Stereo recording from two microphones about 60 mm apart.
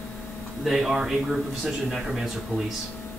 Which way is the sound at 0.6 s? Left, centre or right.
Centre.